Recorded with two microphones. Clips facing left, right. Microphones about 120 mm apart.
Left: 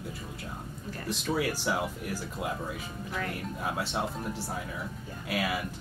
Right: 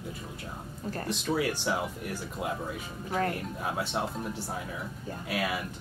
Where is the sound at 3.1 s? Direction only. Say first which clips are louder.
Right 6 dB; 50° right (ahead or behind).